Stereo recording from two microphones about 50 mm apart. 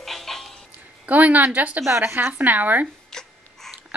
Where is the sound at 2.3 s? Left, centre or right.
Right.